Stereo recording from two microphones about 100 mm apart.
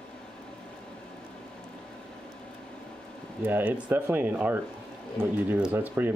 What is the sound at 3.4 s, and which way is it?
Speech, 20° right (ahead or behind).